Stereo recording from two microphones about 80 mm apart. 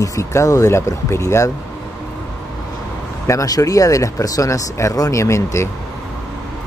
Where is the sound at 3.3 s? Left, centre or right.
Left.